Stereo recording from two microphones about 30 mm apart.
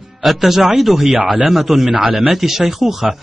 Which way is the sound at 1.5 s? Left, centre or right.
Centre.